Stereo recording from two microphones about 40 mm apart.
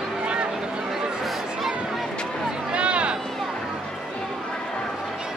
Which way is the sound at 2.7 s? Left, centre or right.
Right.